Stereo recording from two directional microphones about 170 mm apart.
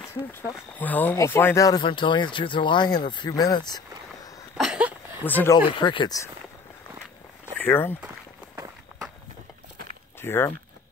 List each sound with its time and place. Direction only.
0.1 s speech: 15° left (ahead or behind)
1.8 s speech: 30° left (ahead or behind)
4.6 s a sound: 5° right (ahead or behind)
5.2 s speech: 10° left (ahead or behind)
5.7 s speech: 30° left (ahead or behind)
7.5 s speech: 15° left (ahead or behind)
10.2 s speech: 15° left (ahead or behind)